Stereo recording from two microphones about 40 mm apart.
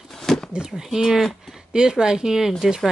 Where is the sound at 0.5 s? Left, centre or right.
Centre.